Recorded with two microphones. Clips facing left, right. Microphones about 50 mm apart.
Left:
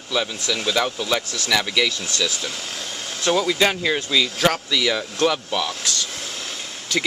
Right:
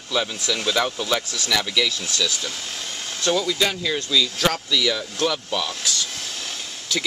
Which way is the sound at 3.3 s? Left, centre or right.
Left.